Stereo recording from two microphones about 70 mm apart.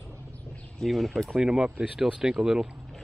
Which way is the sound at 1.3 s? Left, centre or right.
Centre.